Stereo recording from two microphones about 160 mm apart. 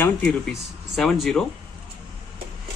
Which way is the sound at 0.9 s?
Centre (ahead or behind).